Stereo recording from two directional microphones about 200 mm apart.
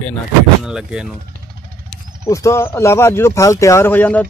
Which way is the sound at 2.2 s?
15° left (ahead or behind).